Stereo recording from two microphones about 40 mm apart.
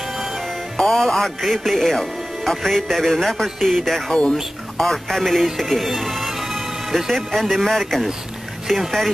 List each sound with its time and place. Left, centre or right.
0.7 s a man's voice: centre
4.1 s speech: left
4.7 s a man's voice: centre